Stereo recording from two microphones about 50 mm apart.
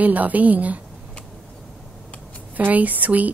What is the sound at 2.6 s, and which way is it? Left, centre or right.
Speech, right.